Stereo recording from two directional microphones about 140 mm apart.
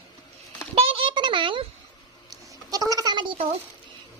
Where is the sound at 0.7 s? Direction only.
45° right (ahead or behind).